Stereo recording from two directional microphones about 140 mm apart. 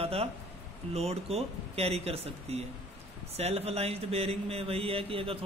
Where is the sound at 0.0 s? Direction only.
45° right (ahead or behind).